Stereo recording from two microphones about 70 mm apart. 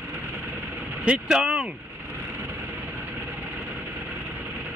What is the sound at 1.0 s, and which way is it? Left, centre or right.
Speech, centre.